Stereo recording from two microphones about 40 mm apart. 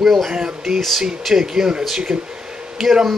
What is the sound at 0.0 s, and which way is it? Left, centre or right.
Speech, centre.